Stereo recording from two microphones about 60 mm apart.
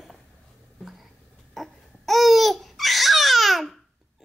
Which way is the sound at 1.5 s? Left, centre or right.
Centre.